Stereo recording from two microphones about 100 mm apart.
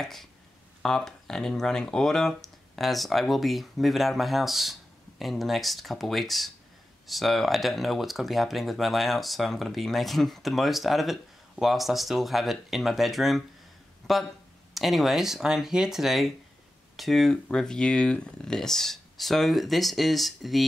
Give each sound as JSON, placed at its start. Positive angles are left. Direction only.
{"t": 0.0, "sound": "speech", "side_deg": 5}